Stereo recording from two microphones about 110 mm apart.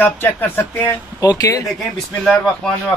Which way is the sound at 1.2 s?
35° left (ahead or behind).